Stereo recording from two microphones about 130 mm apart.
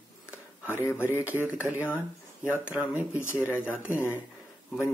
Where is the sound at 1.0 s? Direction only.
15° right (ahead or behind).